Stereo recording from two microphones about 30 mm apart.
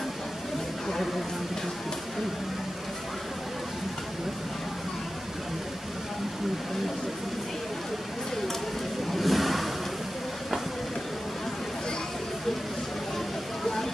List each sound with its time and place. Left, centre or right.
9.1 s vehicle: centre